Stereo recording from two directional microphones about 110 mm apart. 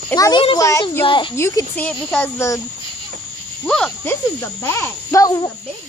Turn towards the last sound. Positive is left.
turn(degrees=35)  # may be behind; listen again after turning